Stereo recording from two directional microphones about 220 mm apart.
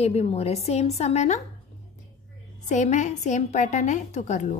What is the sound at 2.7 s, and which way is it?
A woman's voice, 35° left (ahead or behind).